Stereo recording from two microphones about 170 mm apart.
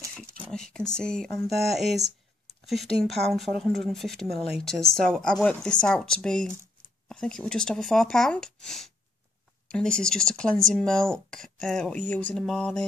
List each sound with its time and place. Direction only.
0.1 s speech: 5° left (ahead or behind)